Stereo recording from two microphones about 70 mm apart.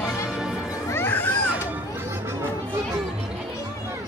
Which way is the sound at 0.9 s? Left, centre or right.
Left.